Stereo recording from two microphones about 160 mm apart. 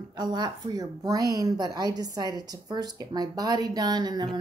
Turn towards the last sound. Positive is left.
turn(degrees=-25)  # may be behind; listen again after turning